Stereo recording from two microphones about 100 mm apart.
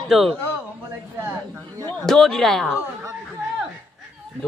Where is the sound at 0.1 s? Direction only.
Centre (ahead or behind).